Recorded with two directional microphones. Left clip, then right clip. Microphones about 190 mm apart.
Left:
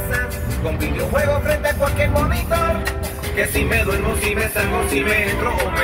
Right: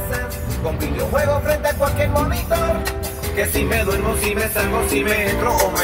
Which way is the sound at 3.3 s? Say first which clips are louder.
Left 1 dB; 60° right (ahead or behind).